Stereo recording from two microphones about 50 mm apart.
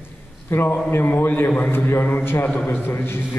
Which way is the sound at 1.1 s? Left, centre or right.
Left.